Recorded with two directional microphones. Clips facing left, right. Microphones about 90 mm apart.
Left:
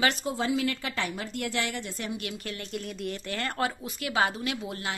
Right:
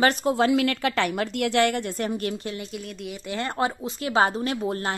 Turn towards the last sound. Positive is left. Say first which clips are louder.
# right 7 dB
turn(degrees=-40)  # may be behind; listen again after turning